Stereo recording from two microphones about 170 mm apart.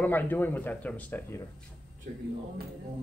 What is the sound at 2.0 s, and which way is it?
Speech, 55° right (ahead or behind).